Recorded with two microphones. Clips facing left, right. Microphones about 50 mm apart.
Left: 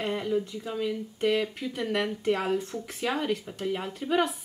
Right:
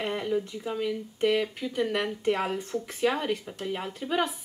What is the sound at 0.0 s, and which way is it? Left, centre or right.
Speech, centre.